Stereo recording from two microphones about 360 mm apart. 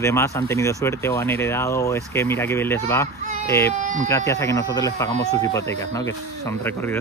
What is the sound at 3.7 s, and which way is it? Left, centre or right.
Speech, right.